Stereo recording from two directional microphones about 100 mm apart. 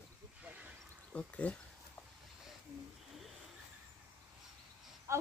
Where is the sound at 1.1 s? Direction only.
10° left (ahead or behind).